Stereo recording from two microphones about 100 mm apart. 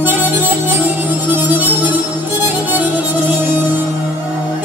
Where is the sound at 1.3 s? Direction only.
15° right (ahead or behind).